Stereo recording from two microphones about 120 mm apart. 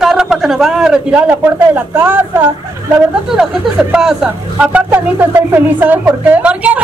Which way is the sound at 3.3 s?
5° right (ahead or behind).